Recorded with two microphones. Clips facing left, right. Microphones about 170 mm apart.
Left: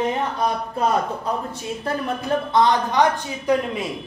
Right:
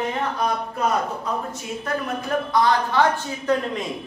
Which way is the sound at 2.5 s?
20° left (ahead or behind).